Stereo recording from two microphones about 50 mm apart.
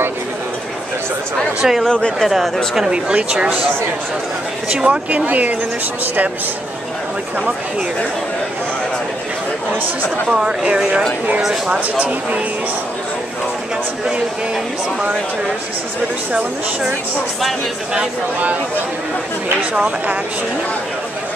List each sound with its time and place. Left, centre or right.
1.6 s speech: centre
1.9 s speech: centre
2.1 s speech: centre
2.7 s speech: centre
4.7 s speech: centre
5.1 s speech: right
10.3 s speech: centre
11.7 s speech: right
19.7 s speech: centre